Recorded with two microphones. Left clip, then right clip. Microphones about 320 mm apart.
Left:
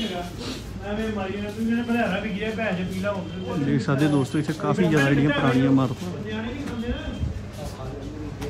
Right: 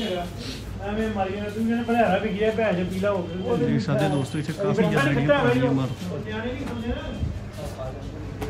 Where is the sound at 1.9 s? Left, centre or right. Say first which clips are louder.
Right 7 dB; right.